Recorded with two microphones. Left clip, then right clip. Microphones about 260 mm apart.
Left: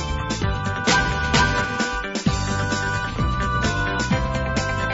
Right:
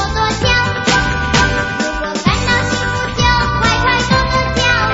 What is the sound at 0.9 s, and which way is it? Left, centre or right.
Music, right.